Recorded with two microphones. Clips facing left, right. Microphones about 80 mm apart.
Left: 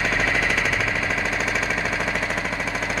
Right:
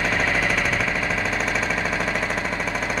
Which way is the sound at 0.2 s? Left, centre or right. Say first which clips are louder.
Even; centre.